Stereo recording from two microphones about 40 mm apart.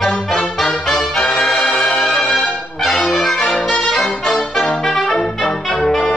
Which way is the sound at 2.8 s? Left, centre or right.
Centre.